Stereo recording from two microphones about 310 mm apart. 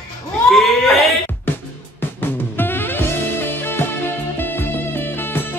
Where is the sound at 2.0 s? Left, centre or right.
Centre.